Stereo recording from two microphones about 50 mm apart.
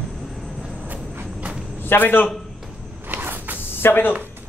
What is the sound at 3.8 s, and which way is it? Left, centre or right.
Speech, left.